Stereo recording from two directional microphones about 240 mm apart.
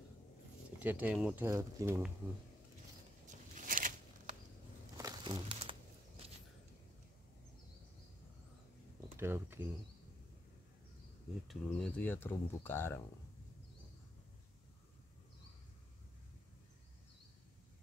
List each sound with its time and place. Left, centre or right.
0.7 s speech: centre
3.3 s a sound: right
4.9 s crumpling: centre
9.1 s speech: centre
11.4 s speech: centre